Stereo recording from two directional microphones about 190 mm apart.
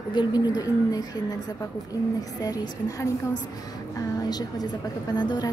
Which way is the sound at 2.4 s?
20° left (ahead or behind).